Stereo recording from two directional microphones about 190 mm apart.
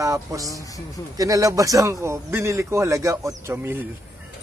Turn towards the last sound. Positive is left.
turn(degrees=-15)  # may be behind; listen again after turning